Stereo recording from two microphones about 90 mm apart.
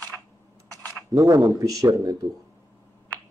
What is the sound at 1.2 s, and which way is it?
A man's voice, 40° right (ahead or behind).